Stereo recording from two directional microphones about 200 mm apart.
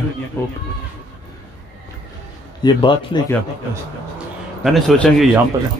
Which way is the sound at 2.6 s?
20° left (ahead or behind).